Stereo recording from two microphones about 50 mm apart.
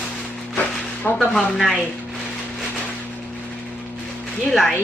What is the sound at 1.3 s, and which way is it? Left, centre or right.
Speech, centre.